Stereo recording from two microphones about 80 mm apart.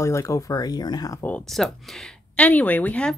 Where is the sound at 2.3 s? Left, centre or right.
Centre.